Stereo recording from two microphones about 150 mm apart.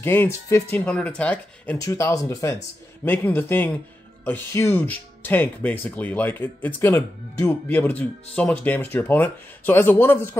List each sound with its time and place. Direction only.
0.0 s speech: 15° left (ahead or behind)
1.8 s speech: 20° left (ahead or behind)